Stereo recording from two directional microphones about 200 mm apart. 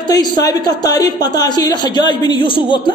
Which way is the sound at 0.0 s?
20° left (ahead or behind).